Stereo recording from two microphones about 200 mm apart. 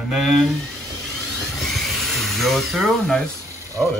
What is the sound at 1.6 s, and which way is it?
Dental drill, centre (ahead or behind).